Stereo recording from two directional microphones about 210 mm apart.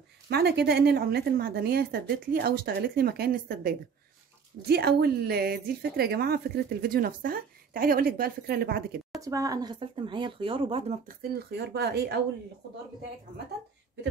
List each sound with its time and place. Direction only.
0.3 s a woman's voice: 50° right (ahead or behind)
9.2 s speech: 15° right (ahead or behind)
11.1 s a woman's voice: 50° right (ahead or behind)